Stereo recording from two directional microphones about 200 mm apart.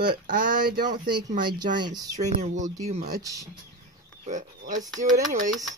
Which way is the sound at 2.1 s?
35° right (ahead or behind).